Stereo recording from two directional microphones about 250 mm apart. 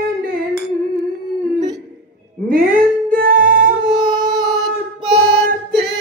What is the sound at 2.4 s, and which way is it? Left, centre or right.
Music, right.